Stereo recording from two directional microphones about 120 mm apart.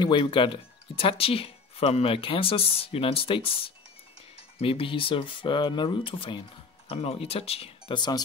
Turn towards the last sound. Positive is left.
turn(degrees=55)  # may be behind; listen again after turning